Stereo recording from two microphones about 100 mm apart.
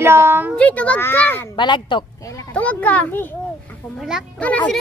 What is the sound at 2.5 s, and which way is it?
Speech, 15° left (ahead or behind).